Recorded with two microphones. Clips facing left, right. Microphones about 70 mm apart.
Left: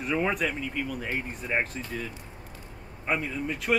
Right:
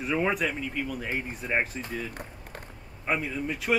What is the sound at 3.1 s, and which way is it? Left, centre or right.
Speech, centre.